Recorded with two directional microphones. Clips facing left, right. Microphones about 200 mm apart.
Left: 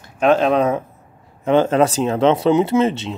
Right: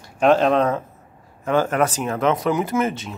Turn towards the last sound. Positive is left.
turn(degrees=25)  # may be behind; listen again after turning